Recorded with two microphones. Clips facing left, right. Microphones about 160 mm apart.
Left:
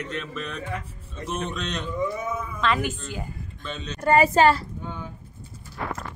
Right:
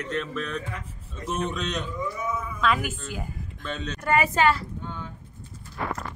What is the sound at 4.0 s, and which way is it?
Speech, 35° left (ahead or behind).